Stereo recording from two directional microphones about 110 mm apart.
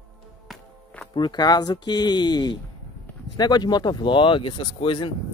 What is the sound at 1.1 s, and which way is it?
Speech, 40° left (ahead or behind).